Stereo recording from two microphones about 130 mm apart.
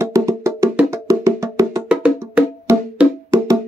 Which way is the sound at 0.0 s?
20° right (ahead or behind).